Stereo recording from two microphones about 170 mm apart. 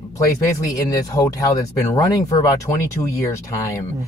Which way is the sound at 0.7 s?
20° left (ahead or behind).